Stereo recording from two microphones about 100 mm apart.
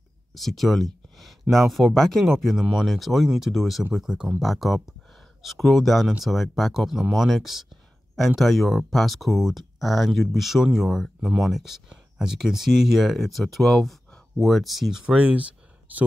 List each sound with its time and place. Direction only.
0.3 s speech: centre (ahead or behind); by 15.4 s 15° right (ahead or behind)